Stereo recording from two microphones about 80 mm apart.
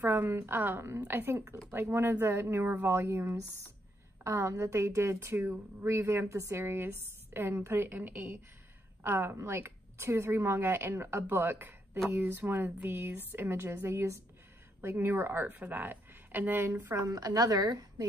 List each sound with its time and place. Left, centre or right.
0.1 s a woman's voice: right
16.8 s a woman's voice: right